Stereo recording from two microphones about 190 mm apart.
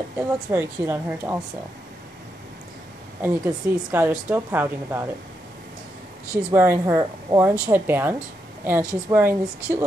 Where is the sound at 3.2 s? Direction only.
10° right (ahead or behind).